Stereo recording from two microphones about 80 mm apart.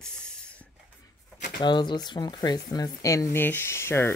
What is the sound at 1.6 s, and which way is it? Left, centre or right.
Speech, left.